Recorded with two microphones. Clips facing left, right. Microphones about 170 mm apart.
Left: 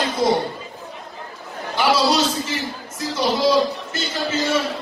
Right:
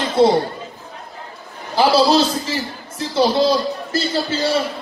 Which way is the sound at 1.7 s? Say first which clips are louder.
Right 4 dB; 30° right (ahead or behind).